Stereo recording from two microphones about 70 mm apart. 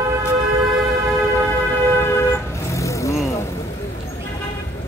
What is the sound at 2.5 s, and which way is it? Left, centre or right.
Vehicle, left.